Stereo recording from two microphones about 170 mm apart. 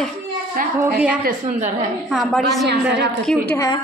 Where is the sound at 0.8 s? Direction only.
5° right (ahead or behind).